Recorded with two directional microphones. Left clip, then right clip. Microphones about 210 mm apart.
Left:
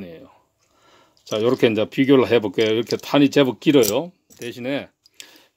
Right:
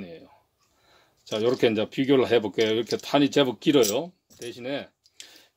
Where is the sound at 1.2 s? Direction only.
25° left (ahead or behind).